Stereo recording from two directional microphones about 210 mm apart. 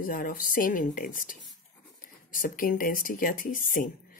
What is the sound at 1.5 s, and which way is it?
Writing, 40° left (ahead or behind).